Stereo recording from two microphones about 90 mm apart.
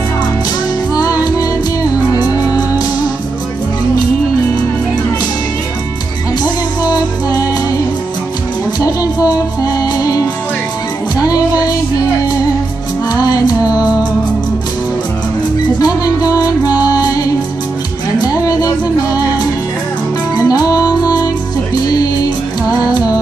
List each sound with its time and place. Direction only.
0.9 s music: 45° left (ahead or behind)
6.8 s music: 45° left (ahead or behind)
8.8 s music: 40° left (ahead or behind)
13.1 s music: 45° left (ahead or behind)
15.8 s music: 45° left (ahead or behind)
18.2 s music: 45° left (ahead or behind)
20.4 s music: 45° left (ahead or behind)
22.7 s music: 50° left (ahead or behind)